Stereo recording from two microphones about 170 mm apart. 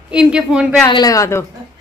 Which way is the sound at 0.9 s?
20° left (ahead or behind).